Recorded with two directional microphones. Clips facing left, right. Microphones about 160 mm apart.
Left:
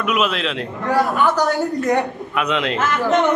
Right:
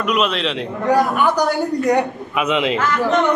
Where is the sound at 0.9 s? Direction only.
15° right (ahead or behind).